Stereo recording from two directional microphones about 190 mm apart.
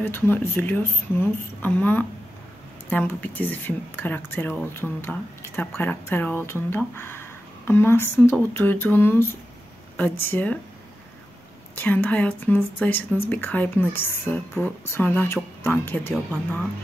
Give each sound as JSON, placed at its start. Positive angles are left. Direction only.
{"t": 0.0, "sound": "speech", "side_deg": 10}
{"t": 11.7, "sound": "speech", "side_deg": 10}